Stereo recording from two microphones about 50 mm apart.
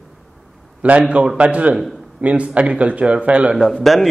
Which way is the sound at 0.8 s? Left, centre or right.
Right.